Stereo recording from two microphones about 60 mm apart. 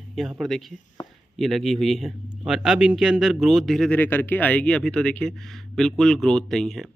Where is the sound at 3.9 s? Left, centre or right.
Left.